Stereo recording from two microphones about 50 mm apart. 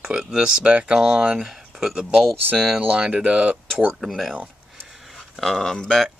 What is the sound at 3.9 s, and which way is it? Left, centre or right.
Speech, centre.